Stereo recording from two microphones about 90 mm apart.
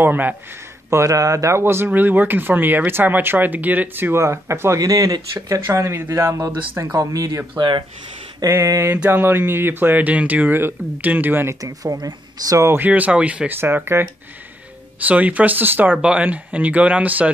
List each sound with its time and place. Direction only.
0.0 s speech: 20° right (ahead or behind)
0.8 s speech: 35° right (ahead or behind)
7.5 s speech: 60° right (ahead or behind)
8.5 s speech: 30° right (ahead or behind)
11.6 s speech: 40° right (ahead or behind)
12.5 s speech: 25° right (ahead or behind)
13.6 s speech: 25° right (ahead or behind)
15.0 s speech: 15° right (ahead or behind)